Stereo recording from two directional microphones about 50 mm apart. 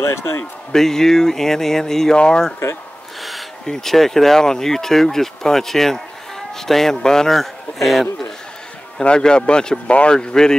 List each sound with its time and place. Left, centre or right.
0.7 s speech: centre
3.2 s a sound: centre
3.6 s speech: centre
9.0 s speech: centre